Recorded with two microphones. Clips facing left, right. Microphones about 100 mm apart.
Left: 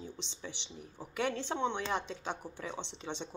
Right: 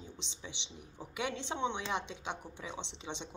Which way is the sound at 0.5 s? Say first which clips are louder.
Left 2 dB; 50° left (ahead or behind).